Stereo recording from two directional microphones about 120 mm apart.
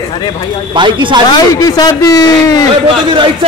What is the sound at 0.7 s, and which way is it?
Speech, 40° right (ahead or behind).